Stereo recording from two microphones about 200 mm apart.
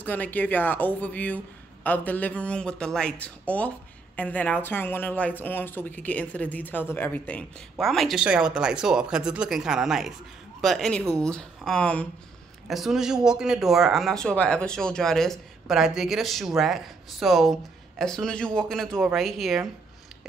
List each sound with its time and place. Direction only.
0.0 s speech: 10° left (ahead or behind)